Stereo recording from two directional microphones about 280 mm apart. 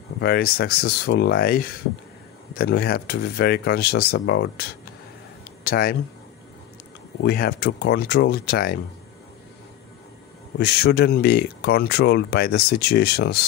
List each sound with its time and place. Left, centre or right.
0.2 s speech: left
7.2 s speech: left
10.6 s speech: left